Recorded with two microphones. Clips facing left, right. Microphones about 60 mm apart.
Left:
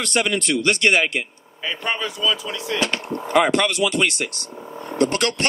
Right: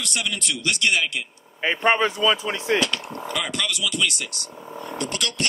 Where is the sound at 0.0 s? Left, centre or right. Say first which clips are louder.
Left 7 dB; left.